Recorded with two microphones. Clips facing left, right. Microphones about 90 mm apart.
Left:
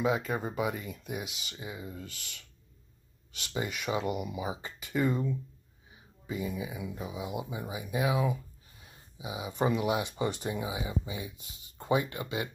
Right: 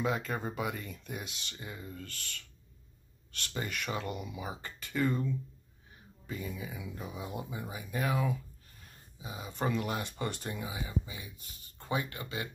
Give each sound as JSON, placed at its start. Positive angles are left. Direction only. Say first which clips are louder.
{"t": 0.0, "sound": "speech", "louder": "left 3 dB", "side_deg": 5}